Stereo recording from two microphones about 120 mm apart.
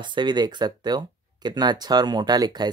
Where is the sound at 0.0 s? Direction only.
40° right (ahead or behind).